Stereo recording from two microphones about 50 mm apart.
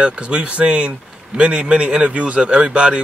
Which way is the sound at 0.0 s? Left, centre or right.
Right.